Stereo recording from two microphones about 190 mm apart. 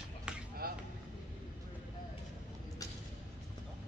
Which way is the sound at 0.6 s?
50° right (ahead or behind).